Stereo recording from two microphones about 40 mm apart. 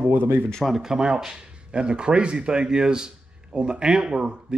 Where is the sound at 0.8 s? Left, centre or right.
Centre.